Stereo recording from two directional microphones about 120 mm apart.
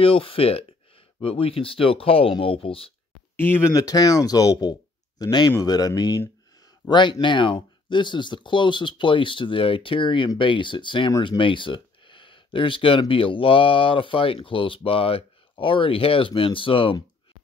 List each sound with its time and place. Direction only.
0.0 s speech: 50° left (ahead or behind)
3.3 s speech: 20° left (ahead or behind)
3.7 s speech: 30° left (ahead or behind); by 17.0 s 45° left (ahead or behind)